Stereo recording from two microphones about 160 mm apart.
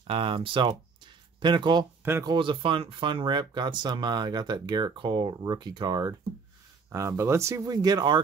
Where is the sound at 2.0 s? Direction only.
15° right (ahead or behind).